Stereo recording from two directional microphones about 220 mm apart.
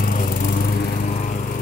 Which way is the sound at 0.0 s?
40° left (ahead or behind).